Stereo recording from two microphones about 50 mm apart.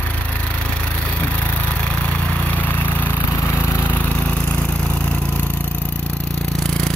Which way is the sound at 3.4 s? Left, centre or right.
Left.